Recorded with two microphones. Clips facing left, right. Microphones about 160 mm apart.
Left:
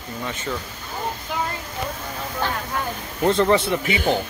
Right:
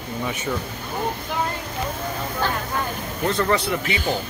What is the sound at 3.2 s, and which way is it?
Speech, 20° left (ahead or behind).